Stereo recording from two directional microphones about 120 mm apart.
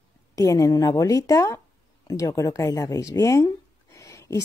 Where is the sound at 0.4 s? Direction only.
30° left (ahead or behind).